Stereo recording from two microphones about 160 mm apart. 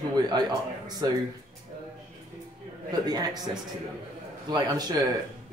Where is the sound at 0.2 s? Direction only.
25° right (ahead or behind).